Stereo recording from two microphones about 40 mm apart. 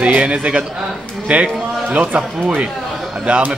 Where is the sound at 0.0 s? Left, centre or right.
Right.